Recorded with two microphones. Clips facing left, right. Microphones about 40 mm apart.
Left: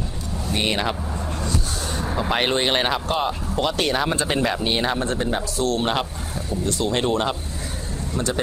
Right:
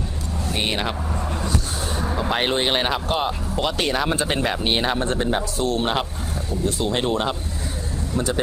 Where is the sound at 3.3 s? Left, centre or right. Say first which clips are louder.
Left 1 dB; centre.